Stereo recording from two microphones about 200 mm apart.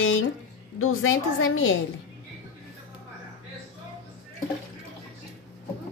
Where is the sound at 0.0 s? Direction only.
85° left.